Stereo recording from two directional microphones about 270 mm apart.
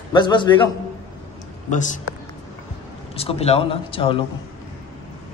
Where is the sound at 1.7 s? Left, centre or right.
Left.